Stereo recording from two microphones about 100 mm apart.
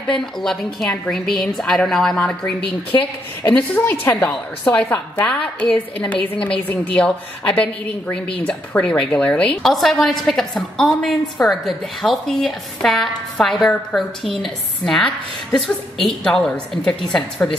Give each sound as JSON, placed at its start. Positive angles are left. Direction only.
{"t": 0.1, "sound": "a woman's voice", "side_deg": 5}
{"t": 3.4, "sound": "a woman's voice", "side_deg": 20}